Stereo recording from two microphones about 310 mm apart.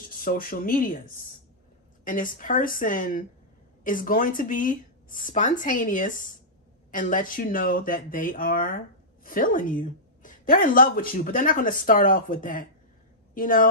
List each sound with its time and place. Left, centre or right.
0.1 s speech: left